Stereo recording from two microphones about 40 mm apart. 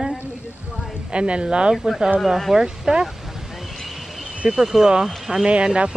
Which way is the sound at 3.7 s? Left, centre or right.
Centre.